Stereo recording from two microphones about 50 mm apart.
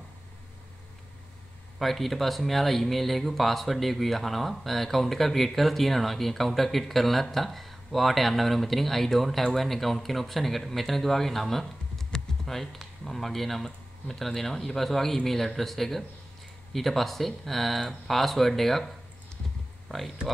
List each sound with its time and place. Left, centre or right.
1.8 s speech: centre
19.9 s speech: centre